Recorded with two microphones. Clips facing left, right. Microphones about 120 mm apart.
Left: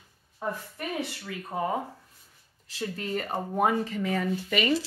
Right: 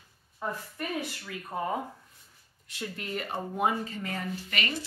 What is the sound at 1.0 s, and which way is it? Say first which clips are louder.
A woman's voice: left 2 dB; 25° left (ahead or behind).